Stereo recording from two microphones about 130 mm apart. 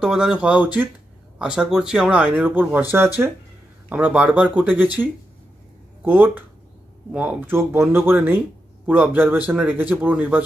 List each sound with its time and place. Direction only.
0.0 s speech: 5° right (ahead or behind)
6.0 s speech: 15° right (ahead or behind)